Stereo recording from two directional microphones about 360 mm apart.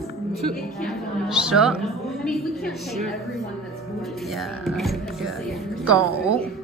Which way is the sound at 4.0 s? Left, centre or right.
Centre.